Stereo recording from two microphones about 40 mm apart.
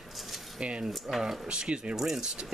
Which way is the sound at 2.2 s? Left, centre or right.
Right.